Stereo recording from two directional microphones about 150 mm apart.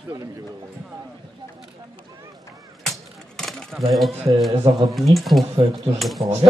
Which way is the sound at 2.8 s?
5° left (ahead or behind).